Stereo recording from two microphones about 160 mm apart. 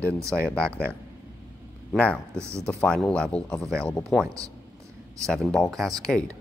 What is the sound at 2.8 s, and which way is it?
Speech, 5° left (ahead or behind).